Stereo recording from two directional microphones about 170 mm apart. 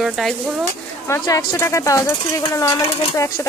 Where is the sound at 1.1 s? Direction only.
20° left (ahead or behind).